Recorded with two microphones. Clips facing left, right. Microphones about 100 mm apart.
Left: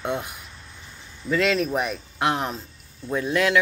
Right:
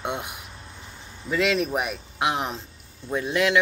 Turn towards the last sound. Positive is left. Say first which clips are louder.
# left 1 dB
turn(degrees=-15)  # may be behind; listen again after turning